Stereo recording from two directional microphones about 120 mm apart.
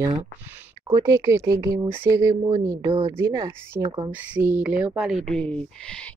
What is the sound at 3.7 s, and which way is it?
Speech, 25° right (ahead or behind).